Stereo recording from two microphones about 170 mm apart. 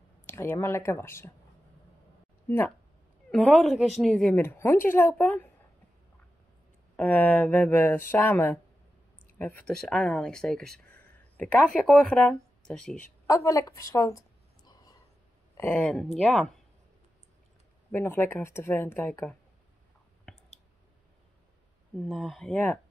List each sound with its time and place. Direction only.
0.3 s speech: 15° left (ahead or behind)
2.4 s speech: 15° left (ahead or behind)
3.3 s a woman's voice: 5° left (ahead or behind)
7.0 s speech: 10° left (ahead or behind)
13.3 s a sound: 20° left (ahead or behind)
15.5 s speech: 10° left (ahead or behind)
17.9 s speech: 15° left (ahead or behind)
22.0 s a woman's voice: centre (ahead or behind)